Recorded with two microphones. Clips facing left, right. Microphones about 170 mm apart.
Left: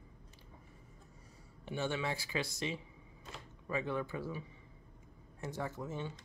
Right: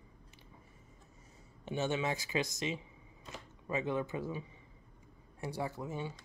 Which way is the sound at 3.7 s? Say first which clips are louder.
Right 2 dB; 20° right (ahead or behind).